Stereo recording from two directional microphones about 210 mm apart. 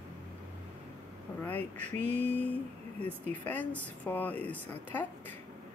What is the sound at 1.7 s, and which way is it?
Mantra, 35° right (ahead or behind).